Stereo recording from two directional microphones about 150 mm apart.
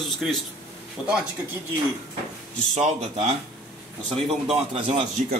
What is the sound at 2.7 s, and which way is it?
A man's voice, 50° right (ahead or behind).